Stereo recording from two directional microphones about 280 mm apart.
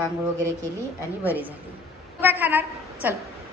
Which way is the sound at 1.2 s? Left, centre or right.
Centre.